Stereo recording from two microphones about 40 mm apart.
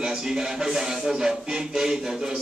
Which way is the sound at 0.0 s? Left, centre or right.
Centre.